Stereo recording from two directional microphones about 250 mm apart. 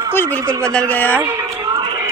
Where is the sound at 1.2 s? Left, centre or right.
Centre.